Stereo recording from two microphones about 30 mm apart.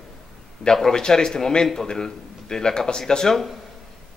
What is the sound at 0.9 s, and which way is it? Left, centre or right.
A man's voice, left.